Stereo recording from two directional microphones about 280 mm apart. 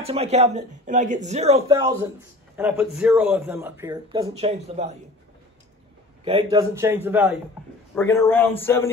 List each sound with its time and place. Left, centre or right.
0.0 s speech: right
6.2 s speech: centre
7.9 s speech: centre